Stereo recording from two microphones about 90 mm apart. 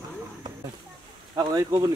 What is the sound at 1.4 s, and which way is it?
Speech, 45° right (ahead or behind).